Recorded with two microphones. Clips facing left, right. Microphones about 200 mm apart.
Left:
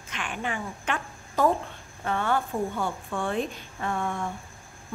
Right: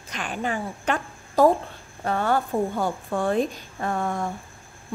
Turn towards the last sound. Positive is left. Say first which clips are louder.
# right 3 dB
turn(degrees=-40)  # may be behind; listen again after turning